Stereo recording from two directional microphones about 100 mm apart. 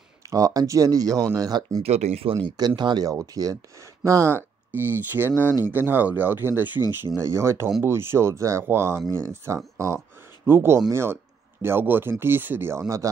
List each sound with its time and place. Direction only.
0.3 s speech: 35° right (ahead or behind)
1.8 s speech: 85° right
2.4 s speech: 45° right (ahead or behind); by 12.8 s 20° right (ahead or behind)
12.8 s speech: 35° right (ahead or behind)